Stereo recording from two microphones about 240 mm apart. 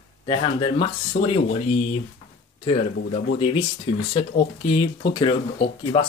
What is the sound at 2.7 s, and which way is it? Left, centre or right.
Speech, left.